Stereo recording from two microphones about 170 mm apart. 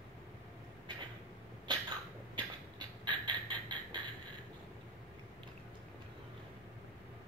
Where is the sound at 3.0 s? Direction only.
25° right (ahead or behind).